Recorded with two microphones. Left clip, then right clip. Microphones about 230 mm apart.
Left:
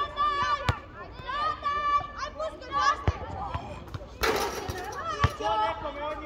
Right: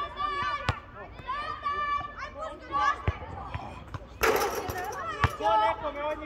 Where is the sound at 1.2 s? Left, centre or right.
Centre.